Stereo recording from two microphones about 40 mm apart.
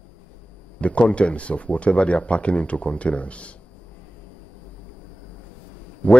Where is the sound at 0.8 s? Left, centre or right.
Left.